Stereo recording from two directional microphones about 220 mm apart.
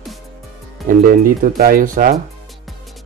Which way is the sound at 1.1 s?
40° right (ahead or behind).